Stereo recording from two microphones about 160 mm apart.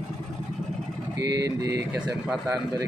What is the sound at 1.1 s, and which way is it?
Speech, 90° right.